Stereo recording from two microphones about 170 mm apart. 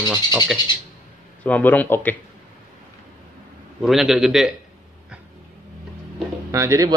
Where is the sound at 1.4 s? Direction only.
10° left (ahead or behind).